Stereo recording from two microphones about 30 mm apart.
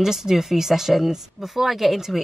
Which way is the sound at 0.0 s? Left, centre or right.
Centre.